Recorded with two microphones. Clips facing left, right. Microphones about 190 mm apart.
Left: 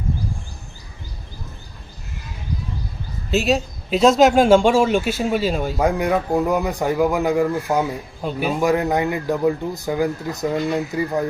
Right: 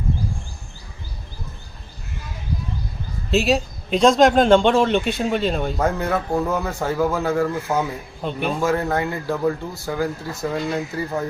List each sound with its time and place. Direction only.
3.3 s a man's voice: centre (ahead or behind)
8.6 s a man's voice: 15° left (ahead or behind)